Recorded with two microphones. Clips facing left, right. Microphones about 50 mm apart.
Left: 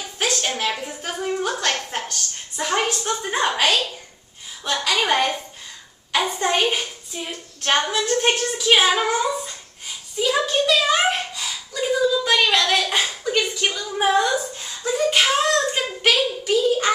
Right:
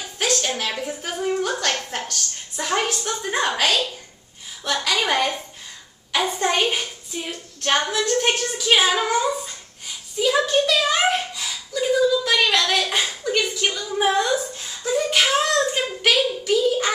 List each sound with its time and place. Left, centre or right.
0.2 s a woman's voice: centre
1.7 s a sound: centre
3.0 s a woman's voice: centre
4.9 s a woman's voice: centre
6.1 s a sound: centre
7.6 s a woman's voice: centre